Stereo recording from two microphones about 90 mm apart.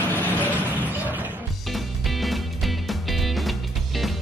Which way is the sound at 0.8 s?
20° right (ahead or behind).